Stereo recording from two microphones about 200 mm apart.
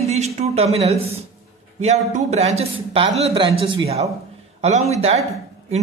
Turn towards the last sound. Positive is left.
turn(degrees=-30)  # may be behind; listen again after turning